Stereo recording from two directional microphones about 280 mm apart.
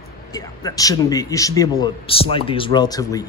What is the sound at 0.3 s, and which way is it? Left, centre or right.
A man's voice, centre.